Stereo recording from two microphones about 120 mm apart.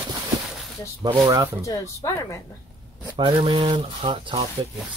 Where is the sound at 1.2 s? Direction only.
30° right (ahead or behind).